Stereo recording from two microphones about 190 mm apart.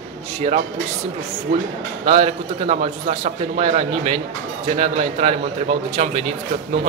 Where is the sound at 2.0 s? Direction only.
35° right (ahead or behind).